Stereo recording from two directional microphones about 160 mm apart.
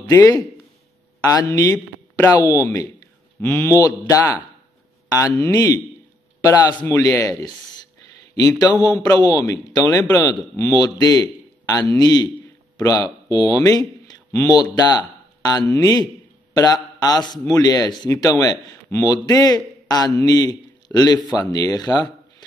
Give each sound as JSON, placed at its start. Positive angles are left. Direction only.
{"t": 0.1, "sound": "a man's voice", "side_deg": 20}
{"t": 5.1, "sound": "a man's voice", "side_deg": 20}